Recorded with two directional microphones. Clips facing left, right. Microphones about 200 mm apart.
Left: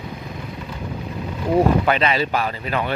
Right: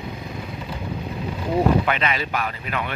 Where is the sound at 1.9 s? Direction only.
30° left (ahead or behind).